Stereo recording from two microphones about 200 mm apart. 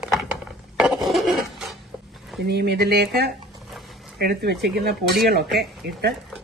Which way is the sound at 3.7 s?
Centre (ahead or behind).